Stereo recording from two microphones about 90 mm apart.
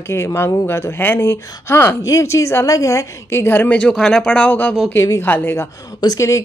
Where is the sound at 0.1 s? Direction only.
30° left (ahead or behind).